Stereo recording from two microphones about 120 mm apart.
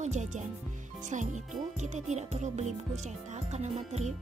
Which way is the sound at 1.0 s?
90° right.